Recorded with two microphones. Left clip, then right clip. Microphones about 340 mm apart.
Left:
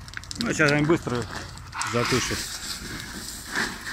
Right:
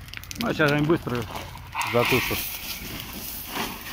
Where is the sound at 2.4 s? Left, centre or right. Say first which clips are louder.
Even; centre.